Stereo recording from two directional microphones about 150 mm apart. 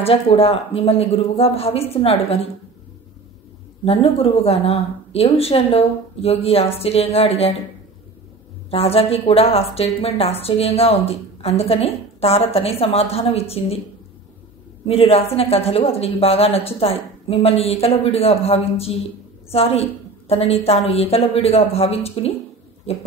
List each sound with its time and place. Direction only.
0.0 s speech: 40° left (ahead or behind)
3.8 s speech: 40° left (ahead or behind)
8.6 s speech: 40° left (ahead or behind)
14.9 s a woman's voice: 40° left (ahead or behind)